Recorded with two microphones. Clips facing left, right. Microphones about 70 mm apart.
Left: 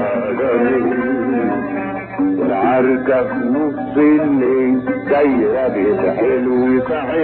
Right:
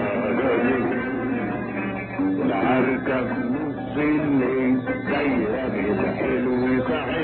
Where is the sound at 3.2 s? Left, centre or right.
Left.